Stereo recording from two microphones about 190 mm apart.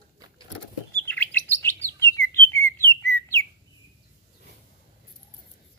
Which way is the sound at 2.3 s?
10° left (ahead or behind).